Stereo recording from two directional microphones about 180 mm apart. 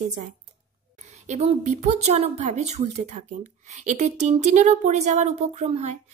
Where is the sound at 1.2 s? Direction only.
40° right (ahead or behind).